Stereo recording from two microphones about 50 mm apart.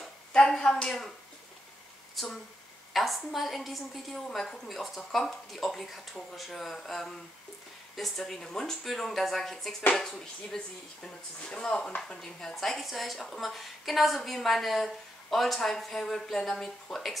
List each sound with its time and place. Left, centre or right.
0.3 s a sound: centre
0.8 s speech: centre
2.2 s a woman's voice: centre